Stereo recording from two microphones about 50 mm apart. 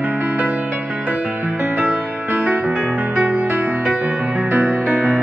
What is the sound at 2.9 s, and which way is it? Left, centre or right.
Music, right.